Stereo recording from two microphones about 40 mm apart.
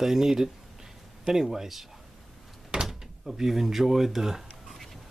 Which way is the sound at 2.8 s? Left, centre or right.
Centre.